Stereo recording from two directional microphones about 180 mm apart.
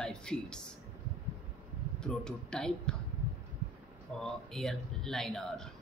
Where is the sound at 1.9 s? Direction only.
5° left (ahead or behind).